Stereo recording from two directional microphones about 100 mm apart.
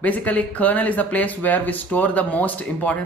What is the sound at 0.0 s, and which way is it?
Speech, 15° left (ahead or behind).